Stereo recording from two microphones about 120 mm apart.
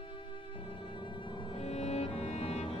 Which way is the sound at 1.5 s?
65° left (ahead or behind).